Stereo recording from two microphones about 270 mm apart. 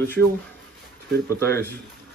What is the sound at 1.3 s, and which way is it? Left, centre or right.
Speech, centre.